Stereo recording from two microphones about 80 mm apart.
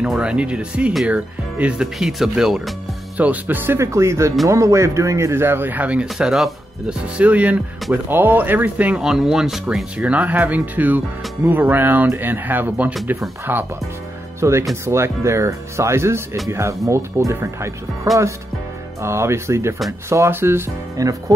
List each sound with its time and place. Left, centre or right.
0.2 s speech: centre
3.2 s a man's voice: right; by 6.5 s centre
7.2 s speech: centre
9.9 s a man's voice: centre
14.4 s speech: right
18.9 s speech: right
21.0 s speech: right